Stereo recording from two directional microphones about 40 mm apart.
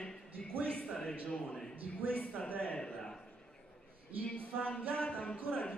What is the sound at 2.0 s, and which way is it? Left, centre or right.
Speech, left.